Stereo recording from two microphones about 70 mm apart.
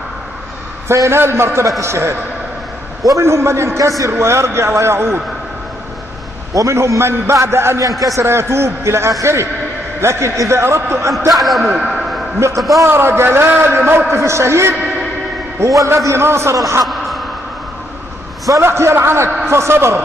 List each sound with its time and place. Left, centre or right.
0.8 s a man's voice: right
6.5 s a man's voice: right
11.3 s a man's voice: centre
11.7 s a sound: centre
12.4 s a man's voice: right
16.8 s a sound: centre
18.6 s a man's voice: right